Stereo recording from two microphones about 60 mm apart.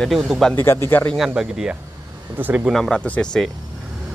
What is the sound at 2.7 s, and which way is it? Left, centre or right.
Speech, centre.